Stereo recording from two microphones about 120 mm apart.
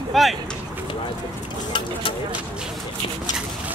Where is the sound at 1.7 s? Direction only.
45° left (ahead or behind).